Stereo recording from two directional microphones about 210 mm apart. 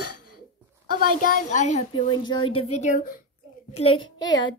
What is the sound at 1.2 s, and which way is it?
Speech, 40° left (ahead or behind).